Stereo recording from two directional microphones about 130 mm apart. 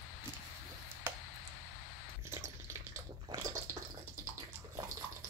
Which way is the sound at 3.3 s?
25° right (ahead or behind).